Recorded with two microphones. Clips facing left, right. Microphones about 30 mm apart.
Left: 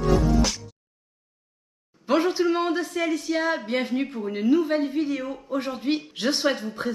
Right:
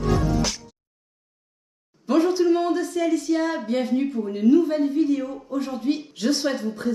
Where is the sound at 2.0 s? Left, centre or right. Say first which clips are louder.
Right 2 dB; left.